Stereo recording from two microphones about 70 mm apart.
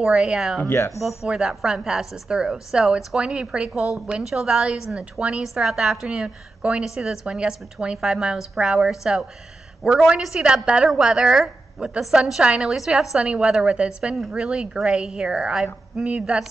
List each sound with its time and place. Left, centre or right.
0.0 s a woman's voice: centre
0.7 s speech: left
1.0 s a woman's voice: centre
10.2 s a woman's voice: centre